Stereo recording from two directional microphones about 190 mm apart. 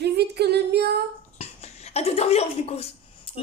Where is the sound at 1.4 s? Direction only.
35° left (ahead or behind).